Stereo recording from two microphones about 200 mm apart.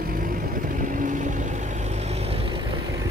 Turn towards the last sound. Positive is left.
turn(degrees=-25)  # may be behind; listen again after turning